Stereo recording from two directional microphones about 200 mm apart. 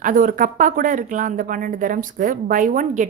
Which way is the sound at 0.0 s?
40° right (ahead or behind).